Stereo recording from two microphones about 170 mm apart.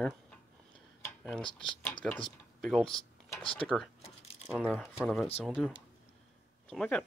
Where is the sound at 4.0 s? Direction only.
40° left (ahead or behind).